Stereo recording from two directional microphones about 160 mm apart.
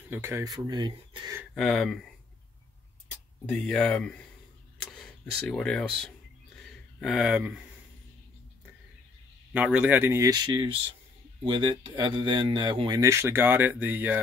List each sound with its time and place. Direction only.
0.1 s speech: 15° right (ahead or behind)
1.5 s speech: centre (ahead or behind)
3.4 s speech: 5° left (ahead or behind)
5.5 s speech: 5° left (ahead or behind)
9.5 s speech: 10° right (ahead or behind)